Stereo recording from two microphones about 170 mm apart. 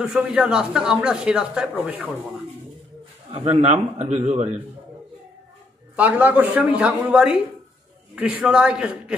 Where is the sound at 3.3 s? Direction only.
40° right (ahead or behind).